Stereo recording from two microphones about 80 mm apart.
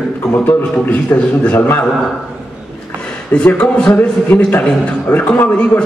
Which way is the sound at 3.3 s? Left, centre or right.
Centre.